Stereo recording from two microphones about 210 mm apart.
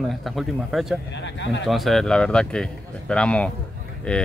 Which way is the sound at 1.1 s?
60° left (ahead or behind).